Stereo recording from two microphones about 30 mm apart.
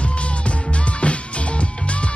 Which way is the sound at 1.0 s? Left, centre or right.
Left.